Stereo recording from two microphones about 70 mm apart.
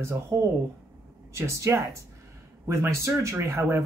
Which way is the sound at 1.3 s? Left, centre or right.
Right.